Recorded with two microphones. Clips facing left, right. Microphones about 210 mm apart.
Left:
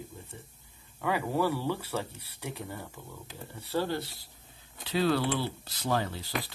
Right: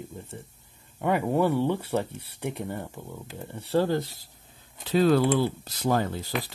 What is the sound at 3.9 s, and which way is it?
Speech, 45° right (ahead or behind).